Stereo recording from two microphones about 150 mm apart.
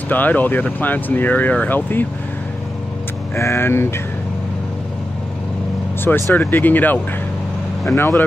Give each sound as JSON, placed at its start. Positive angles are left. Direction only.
{"t": 0.1, "sound": "speech", "side_deg": 10}
{"t": 3.3, "sound": "speech", "side_deg": 15}
{"t": 6.0, "sound": "speech", "side_deg": 15}